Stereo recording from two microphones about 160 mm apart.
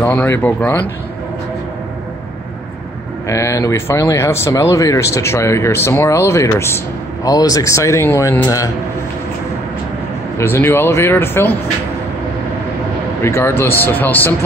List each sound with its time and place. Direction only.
0.0 s speech: 10° left (ahead or behind)
3.3 s speech: 20° left (ahead or behind)
10.3 s speech: 15° left (ahead or behind)
13.2 s speech: 15° left (ahead or behind)